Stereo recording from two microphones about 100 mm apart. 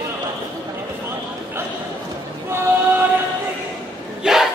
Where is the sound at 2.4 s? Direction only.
25° right (ahead or behind).